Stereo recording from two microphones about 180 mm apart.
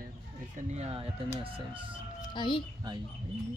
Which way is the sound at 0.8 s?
35° right (ahead or behind).